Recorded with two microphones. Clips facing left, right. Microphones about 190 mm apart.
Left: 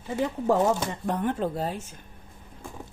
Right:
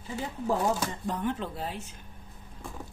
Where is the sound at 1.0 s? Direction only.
60° left (ahead or behind); by 1.9 s 45° left (ahead or behind).